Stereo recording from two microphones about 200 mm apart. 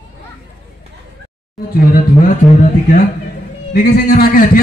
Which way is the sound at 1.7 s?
45° left (ahead or behind).